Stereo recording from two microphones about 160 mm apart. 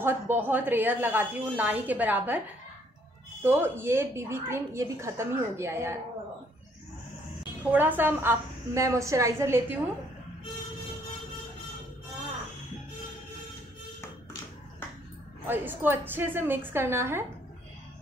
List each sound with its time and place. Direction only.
0.0 s a woman's voice: 10° right (ahead or behind)
3.4 s a woman's voice: 15° right (ahead or behind)
7.7 s a woman's voice: 10° right (ahead or behind)
15.4 s a woman's voice: 10° right (ahead or behind)